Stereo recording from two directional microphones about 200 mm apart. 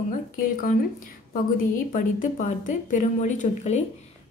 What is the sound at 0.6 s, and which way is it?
A woman's voice, 45° left (ahead or behind).